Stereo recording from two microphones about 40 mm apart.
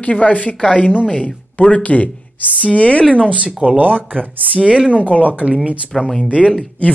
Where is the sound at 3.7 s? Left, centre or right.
Right.